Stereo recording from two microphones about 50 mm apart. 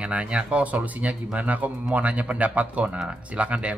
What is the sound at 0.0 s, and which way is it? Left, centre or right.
Speech, right.